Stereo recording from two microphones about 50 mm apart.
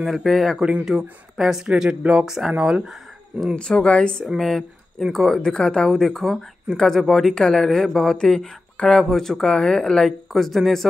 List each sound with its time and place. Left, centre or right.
0.0 s speech: centre
0.6 s speech: right
0.8 s speech: centre
1.8 s speech: centre
3.5 s speech: centre
4.4 s speech: centre
5.4 s speech: centre
10.3 s speech: centre